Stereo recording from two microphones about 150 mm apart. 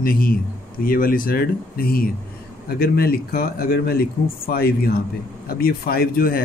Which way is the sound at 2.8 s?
90° left.